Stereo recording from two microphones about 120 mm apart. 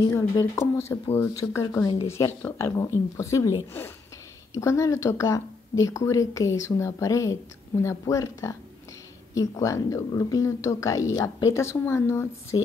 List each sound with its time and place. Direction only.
0.1 s speech: 20° left (ahead or behind)